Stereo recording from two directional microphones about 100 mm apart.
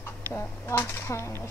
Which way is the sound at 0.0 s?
25° left (ahead or behind).